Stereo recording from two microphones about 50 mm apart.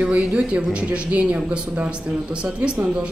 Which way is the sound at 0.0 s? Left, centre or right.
Right.